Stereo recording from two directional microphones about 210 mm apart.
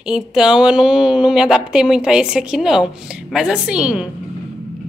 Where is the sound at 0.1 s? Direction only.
5° right (ahead or behind).